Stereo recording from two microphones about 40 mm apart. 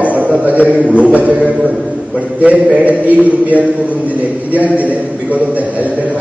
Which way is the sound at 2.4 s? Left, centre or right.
Right.